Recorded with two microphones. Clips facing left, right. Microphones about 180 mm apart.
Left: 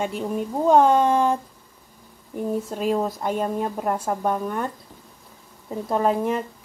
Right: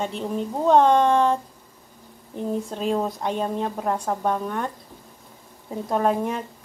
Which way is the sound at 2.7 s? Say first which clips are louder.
Left 1 dB; 5° left (ahead or behind).